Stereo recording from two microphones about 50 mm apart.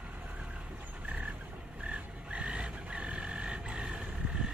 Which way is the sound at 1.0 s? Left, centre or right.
Right.